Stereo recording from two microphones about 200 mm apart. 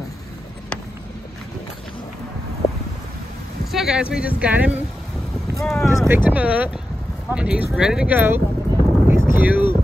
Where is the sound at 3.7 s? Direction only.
5° right (ahead or behind).